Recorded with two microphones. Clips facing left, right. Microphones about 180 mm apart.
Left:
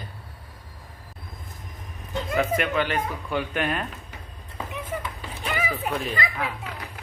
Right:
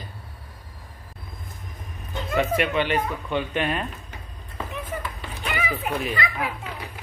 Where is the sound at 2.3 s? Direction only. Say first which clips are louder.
Right 2 dB; centre (ahead or behind).